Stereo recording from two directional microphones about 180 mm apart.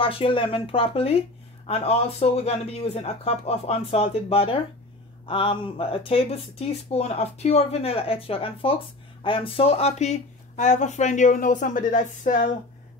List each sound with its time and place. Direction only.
0.0 s speech: 30° left (ahead or behind); by 12.4 s 45° left (ahead or behind)